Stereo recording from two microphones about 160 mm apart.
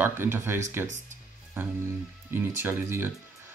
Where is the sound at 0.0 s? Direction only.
15° right (ahead or behind).